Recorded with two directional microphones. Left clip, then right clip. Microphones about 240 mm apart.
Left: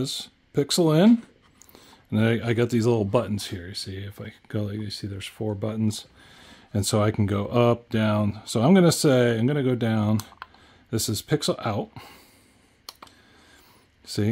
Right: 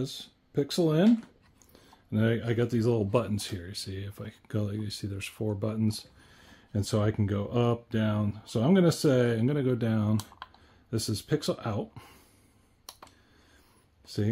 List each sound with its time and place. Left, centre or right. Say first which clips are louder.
0.0 s speech: left 7 dB; left
14.0 s speech: left 5 dB; left